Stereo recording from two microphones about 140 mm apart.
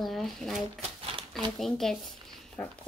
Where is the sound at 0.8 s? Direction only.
40° right (ahead or behind).